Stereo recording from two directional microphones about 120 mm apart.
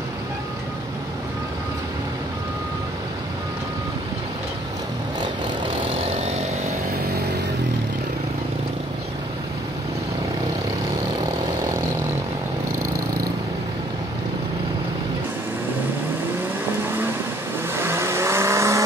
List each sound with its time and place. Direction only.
17.7 s vehicle: 20° right (ahead or behind)